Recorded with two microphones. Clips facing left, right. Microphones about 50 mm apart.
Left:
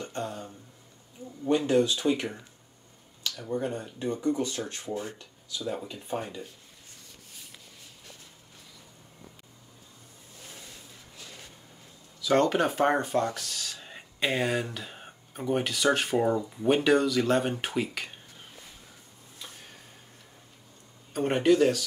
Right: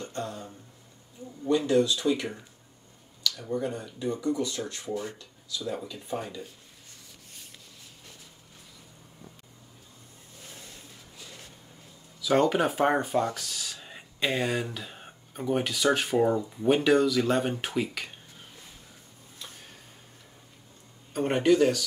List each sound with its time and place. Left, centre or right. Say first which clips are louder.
0.0 s a sound: left 1 dB; left
1.7 s speech: right 1 dB; left
3.5 s speech: left 2 dB; left
12.2 s speech: even; centre
19.3 s a sound: even; centre
21.1 s speech: even; centre